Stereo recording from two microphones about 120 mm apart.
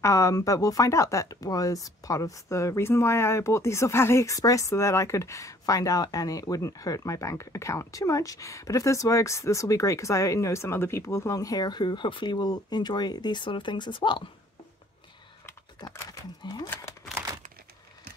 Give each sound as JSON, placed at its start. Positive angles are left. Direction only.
{"t": 0.0, "sound": "speech", "side_deg": 25}
{"t": 15.8, "sound": "speech", "side_deg": 30}